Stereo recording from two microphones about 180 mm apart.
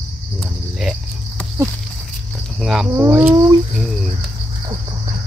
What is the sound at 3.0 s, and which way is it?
Speech, 10° right (ahead or behind).